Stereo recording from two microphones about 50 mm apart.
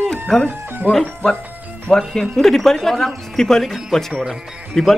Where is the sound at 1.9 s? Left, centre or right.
Centre.